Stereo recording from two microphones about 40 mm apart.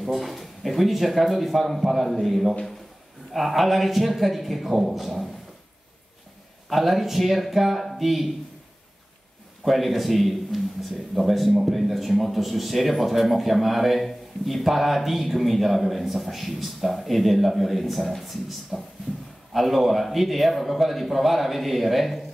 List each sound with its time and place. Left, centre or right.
0.0 s a man's voice: centre
6.7 s a man's voice: centre
9.7 s a man's voice: centre
19.1 s a sound: right
19.5 s a man's voice: centre